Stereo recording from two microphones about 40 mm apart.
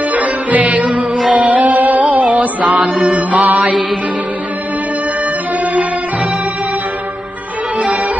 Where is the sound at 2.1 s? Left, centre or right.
Right.